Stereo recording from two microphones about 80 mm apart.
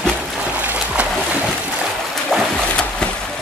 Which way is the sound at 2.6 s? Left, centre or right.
Centre.